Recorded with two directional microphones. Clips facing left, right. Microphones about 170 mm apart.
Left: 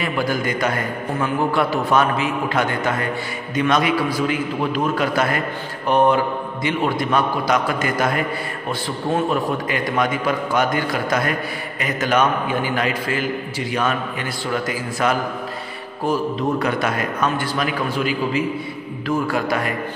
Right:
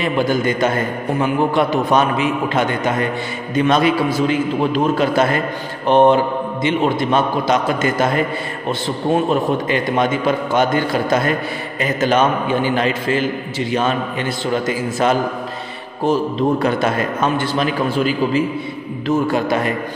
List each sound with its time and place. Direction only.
0.0 s a man's voice: 25° right (ahead or behind)